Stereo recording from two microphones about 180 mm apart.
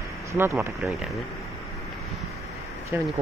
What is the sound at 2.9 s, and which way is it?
Speech, 10° right (ahead or behind).